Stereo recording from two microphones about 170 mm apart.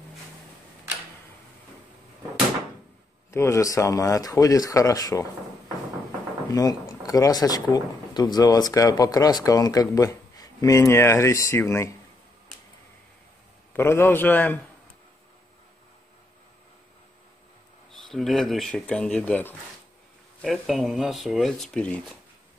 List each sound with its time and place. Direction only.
3.3 s speech: 15° left (ahead or behind)
6.5 s speech: 20° left (ahead or behind)
13.7 s a man's voice: 15° left (ahead or behind)
18.0 s speech: centre (ahead or behind)